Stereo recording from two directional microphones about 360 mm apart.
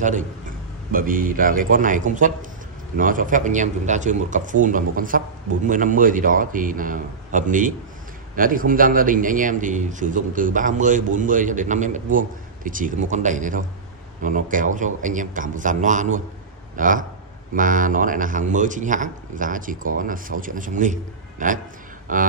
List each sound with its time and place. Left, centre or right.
0.0 s a man's voice: right